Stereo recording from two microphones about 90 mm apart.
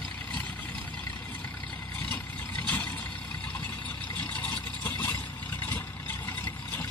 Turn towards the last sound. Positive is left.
turn(degrees=20)  # may be behind; listen again after turning